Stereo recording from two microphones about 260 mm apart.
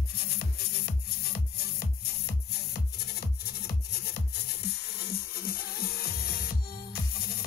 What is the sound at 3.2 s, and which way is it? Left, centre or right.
Music, left.